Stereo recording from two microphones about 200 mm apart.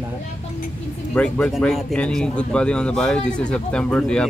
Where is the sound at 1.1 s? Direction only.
5° left (ahead or behind).